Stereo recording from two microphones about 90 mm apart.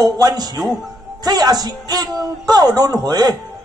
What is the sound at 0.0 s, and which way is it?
A man's voice, 45° right (ahead or behind).